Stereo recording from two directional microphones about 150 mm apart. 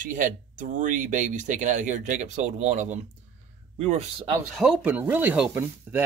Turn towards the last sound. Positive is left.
turn(degrees=-15)  # may be behind; listen again after turning